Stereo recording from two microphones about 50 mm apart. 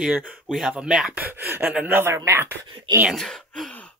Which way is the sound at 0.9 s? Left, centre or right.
Centre.